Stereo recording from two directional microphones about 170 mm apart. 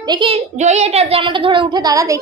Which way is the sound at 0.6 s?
40° right (ahead or behind).